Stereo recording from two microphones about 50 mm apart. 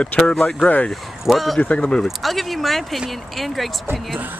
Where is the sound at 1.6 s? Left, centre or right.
Left.